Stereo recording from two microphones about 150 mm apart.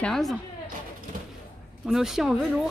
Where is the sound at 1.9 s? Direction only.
Centre (ahead or behind).